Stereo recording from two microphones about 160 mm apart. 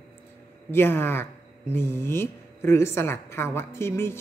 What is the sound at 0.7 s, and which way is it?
A woman's voice, 15° left (ahead or behind).